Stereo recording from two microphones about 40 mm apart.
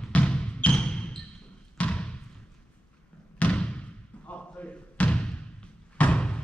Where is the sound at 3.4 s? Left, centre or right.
Left.